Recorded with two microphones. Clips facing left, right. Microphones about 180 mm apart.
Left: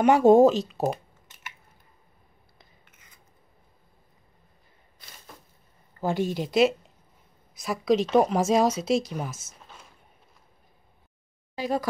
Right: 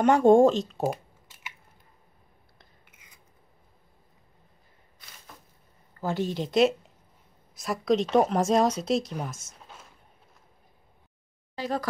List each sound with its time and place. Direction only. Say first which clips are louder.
0.0 s speech: left 1 dB; 5° left (ahead or behind)
5.9 s a woman's voice: left 2 dB; 15° left (ahead or behind); by 9.8 s centre (ahead or behind)
11.5 s speech: left 3 dB; 10° left (ahead or behind)